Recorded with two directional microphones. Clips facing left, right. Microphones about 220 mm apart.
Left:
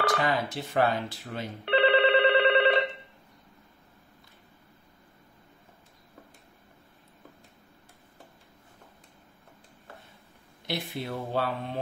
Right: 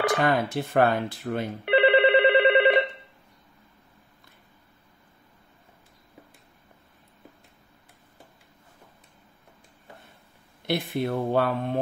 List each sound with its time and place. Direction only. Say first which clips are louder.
0.2 s speech: right 5 dB; 55° right (ahead or behind)
1.6 s telephone bell ringing: right 3 dB; 15° right (ahead or behind)
10.7 s speech: right 7 dB; 55° right (ahead or behind)